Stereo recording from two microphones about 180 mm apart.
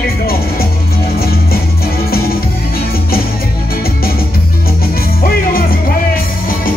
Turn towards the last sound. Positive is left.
turn(degrees=55)  # may be behind; listen again after turning